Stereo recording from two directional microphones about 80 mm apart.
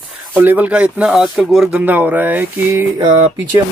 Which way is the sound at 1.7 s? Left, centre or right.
Right.